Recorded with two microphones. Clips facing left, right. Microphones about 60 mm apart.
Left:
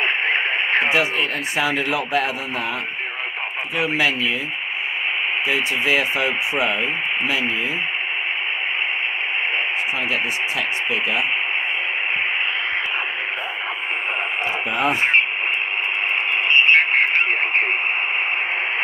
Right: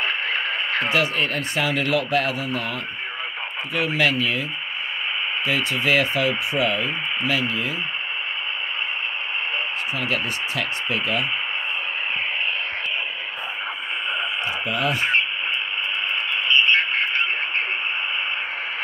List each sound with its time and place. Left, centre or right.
0.0 s radio: left
1.6 s speech: centre
3.7 s speech: left
5.5 s speech: centre
14.8 s speech: left
16.4 s radio: left